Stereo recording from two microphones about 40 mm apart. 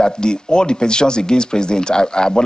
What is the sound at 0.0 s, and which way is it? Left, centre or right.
Speech, centre.